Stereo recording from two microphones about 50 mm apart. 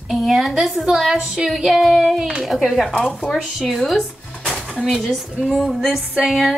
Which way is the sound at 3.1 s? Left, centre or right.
Centre.